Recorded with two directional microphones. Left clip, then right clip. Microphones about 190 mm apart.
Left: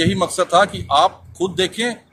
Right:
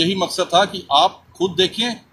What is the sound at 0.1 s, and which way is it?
Speech, 10° left (ahead or behind).